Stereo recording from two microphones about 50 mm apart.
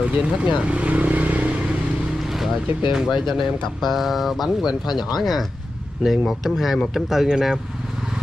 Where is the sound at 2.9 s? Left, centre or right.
Centre.